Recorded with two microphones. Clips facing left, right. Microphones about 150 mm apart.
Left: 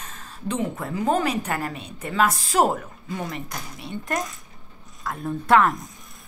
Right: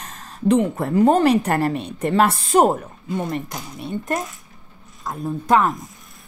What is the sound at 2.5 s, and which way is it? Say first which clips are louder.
Speech: right 5 dB; 45° right (ahead or behind).